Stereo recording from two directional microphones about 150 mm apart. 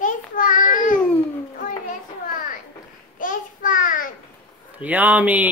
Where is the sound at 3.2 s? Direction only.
60° left (ahead or behind).